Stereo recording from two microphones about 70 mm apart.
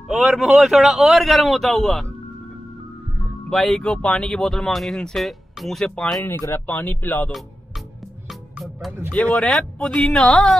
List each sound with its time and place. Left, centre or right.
0.1 s speech: centre
3.4 s a woman's voice: centre
6.8 s speech: left
8.3 s music: centre
9.1 s speech: centre
9.9 s a woman's voice: centre